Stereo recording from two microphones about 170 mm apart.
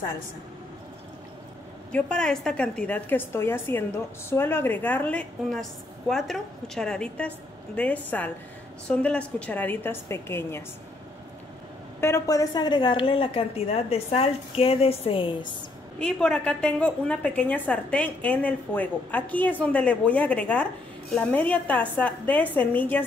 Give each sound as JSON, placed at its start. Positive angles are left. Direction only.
{"t": 1.9, "sound": "a woman's voice", "side_deg": 5}
{"t": 12.0, "sound": "a woman's voice", "side_deg": 15}
{"t": 16.0, "sound": "a woman's voice", "side_deg": 5}